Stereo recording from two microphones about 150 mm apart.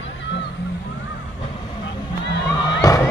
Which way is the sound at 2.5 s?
25° left (ahead or behind).